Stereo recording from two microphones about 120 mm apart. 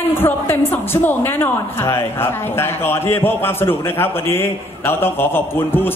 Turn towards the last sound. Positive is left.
turn(degrees=15)  # may be behind; listen again after turning